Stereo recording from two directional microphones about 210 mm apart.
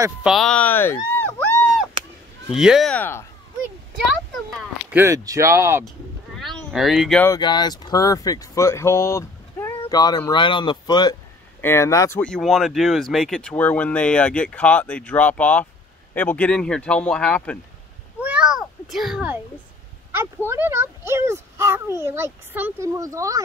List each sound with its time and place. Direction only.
0.2 s speech: centre (ahead or behind)
4.9 s a child's voice: 15° right (ahead or behind)
6.3 s a sound: centre (ahead or behind)
7.2 s speech: 20° left (ahead or behind)
18.2 s a sound: 5° right (ahead or behind)
20.4 s a child's voice: 10° right (ahead or behind)